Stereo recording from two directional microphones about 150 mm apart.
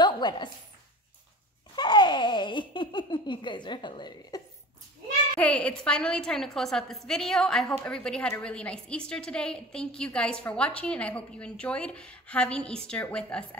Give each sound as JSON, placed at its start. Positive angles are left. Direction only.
{"t": 0.0, "sound": "a sound", "side_deg": 30}
{"t": 1.8, "sound": "giggle", "side_deg": 30}
{"t": 5.4, "sound": "a woman's voice", "side_deg": 10}